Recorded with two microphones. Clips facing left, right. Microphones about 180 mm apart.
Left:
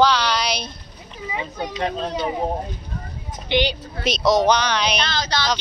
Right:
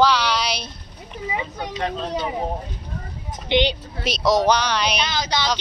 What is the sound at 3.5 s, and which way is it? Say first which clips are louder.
Speech: right 1 dB; 20° right (ahead or behind).